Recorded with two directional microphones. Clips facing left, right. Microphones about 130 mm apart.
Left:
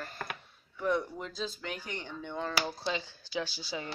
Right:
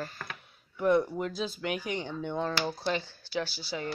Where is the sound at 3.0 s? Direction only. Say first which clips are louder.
Right 2 dB; 15° left (ahead or behind).